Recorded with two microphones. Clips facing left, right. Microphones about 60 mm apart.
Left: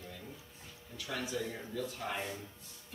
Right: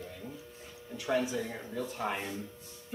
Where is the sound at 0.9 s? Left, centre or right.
Right.